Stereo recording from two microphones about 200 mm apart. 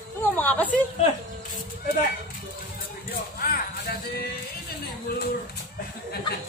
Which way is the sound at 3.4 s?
50° left (ahead or behind).